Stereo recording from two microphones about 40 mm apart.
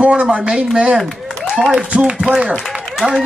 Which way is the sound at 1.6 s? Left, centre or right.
Centre.